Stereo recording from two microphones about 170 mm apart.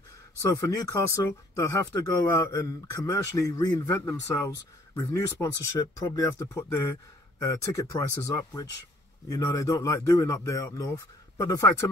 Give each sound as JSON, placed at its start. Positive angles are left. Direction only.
{"t": 0.4, "sound": "speech", "side_deg": 20}